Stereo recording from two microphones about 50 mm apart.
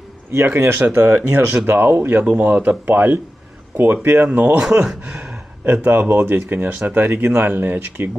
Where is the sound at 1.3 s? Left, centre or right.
Right.